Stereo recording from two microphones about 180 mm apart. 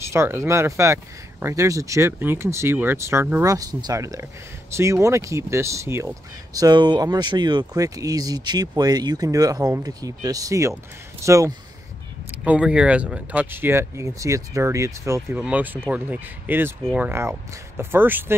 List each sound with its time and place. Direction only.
0.1 s speech: 15° right (ahead or behind)
12.3 s speech: 5° right (ahead or behind)